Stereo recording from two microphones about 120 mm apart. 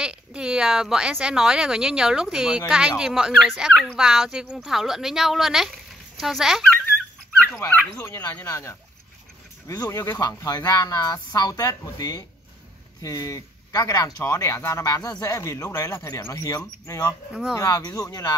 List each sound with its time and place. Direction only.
0.0 s speech: 5° right (ahead or behind)
7.4 s speech: 20° left (ahead or behind)
17.3 s speech: 5° right (ahead or behind)
17.6 s speech: 30° left (ahead or behind)